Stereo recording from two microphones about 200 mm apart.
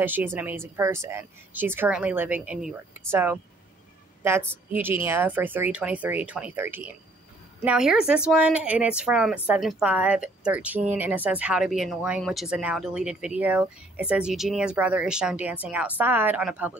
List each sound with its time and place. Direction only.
0.0 s speech: 10° right (ahead or behind)
4.7 s speech: 10° right (ahead or behind)